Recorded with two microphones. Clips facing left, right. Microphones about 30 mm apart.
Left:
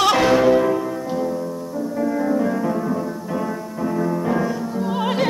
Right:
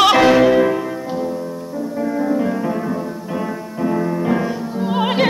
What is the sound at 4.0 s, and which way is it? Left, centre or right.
Music, right.